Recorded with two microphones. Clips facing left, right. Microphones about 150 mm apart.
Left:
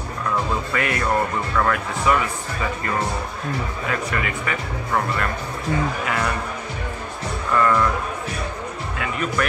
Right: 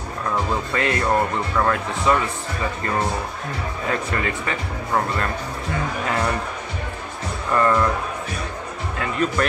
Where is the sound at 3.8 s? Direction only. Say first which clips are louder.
Right 2 dB; 30° right (ahead or behind).